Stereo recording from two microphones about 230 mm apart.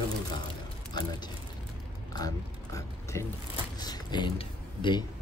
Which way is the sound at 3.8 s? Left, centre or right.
Centre.